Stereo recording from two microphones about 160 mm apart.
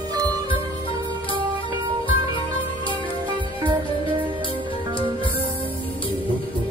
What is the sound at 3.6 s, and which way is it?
Music, 30° right (ahead or behind).